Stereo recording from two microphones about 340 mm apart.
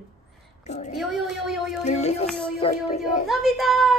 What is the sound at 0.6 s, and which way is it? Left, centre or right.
Speech, centre.